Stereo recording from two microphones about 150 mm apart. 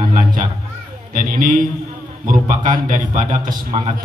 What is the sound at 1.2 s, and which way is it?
A man's voice, 65° right (ahead or behind).